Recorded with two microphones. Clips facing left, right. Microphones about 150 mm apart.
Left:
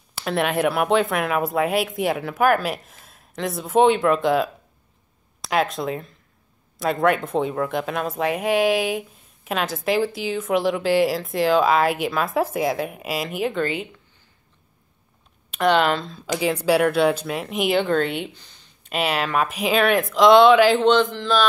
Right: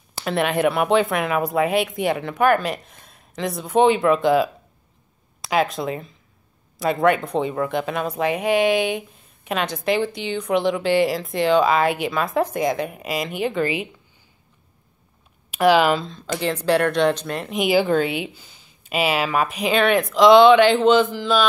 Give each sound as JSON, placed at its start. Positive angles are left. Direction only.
{"t": 0.2, "sound": "speech", "side_deg": 0}
{"t": 15.5, "sound": "speech", "side_deg": -5}
{"t": 16.2, "sound": "speech", "side_deg": 10}